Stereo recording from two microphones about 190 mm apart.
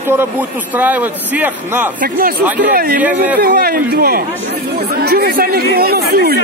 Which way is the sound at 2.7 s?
50° right (ahead or behind).